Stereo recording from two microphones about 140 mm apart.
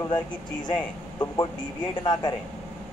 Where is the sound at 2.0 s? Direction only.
30° left (ahead or behind).